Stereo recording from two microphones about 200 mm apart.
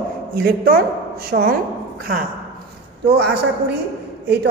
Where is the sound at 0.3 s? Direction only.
50° right (ahead or behind).